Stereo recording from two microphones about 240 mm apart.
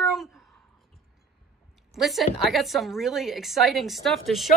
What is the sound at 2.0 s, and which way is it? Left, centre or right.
A woman's voice, centre.